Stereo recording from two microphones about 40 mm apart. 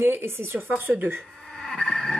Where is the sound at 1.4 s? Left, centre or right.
Centre.